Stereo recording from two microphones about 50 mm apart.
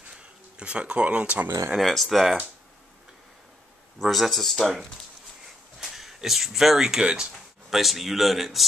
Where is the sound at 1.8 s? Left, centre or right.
Centre.